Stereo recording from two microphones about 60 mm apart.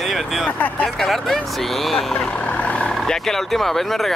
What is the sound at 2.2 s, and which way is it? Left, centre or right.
Vehicle, centre.